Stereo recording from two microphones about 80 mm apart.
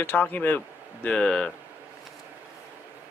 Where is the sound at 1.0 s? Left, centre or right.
Centre.